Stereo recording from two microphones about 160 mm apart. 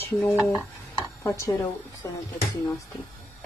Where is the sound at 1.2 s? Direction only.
20° left (ahead or behind).